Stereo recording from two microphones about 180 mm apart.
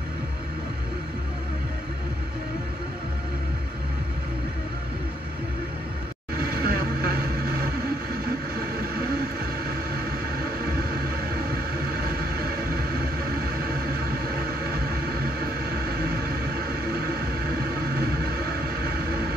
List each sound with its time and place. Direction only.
6.4 s vehicle: 60° right (ahead or behind)